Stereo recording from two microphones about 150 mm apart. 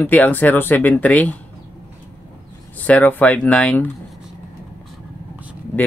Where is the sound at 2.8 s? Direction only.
10° left (ahead or behind).